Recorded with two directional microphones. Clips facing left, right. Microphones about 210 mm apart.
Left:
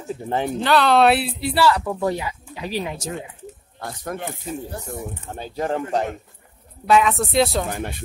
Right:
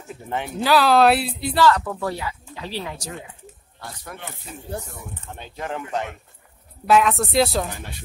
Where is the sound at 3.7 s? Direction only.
50° left (ahead or behind).